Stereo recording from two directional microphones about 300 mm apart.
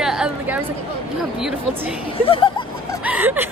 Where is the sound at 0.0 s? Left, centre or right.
Centre.